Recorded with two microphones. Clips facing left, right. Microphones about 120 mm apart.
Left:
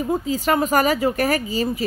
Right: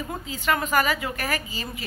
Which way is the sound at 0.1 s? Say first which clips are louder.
Left 6 dB; 35° left (ahead or behind).